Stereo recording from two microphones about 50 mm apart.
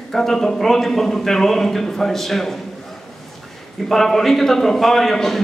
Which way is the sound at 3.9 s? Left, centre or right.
Centre.